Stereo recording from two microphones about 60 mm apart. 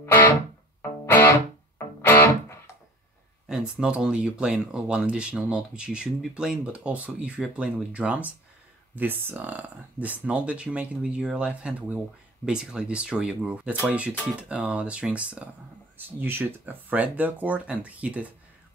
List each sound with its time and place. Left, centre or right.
0.0 s music: left
3.4 s speech: centre
8.9 s speech: right
16.0 s speech: right